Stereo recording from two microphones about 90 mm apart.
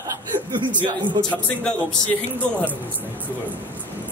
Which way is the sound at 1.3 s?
10° left (ahead or behind).